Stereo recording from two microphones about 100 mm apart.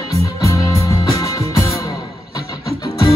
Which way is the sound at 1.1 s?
30° left (ahead or behind).